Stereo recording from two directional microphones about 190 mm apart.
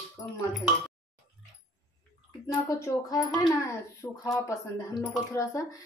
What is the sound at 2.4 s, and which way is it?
Speech, 15° left (ahead or behind).